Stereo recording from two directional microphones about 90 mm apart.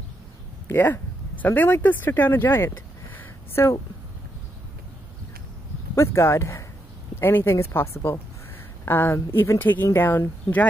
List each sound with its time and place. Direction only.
0.7 s speech: 25° left (ahead or behind)
3.2 s a sound: 25° left (ahead or behind)
5.9 s speech: 30° left (ahead or behind)